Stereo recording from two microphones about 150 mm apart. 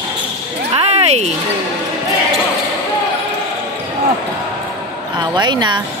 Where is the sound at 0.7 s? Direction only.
45° right (ahead or behind).